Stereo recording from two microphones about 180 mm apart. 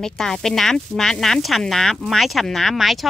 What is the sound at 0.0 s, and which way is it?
Speech, 5° left (ahead or behind).